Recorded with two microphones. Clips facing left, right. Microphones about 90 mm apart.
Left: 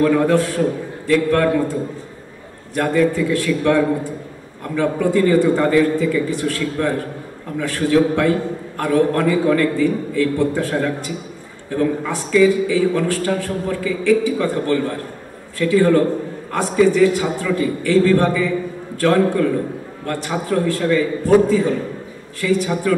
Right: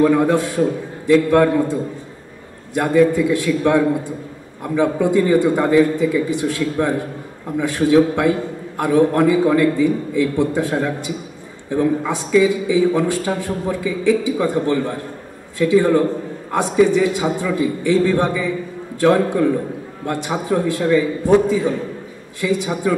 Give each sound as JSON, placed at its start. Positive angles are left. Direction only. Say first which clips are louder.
{"t": 0.0, "sound": "a man's voice", "louder": "even", "side_deg": -15}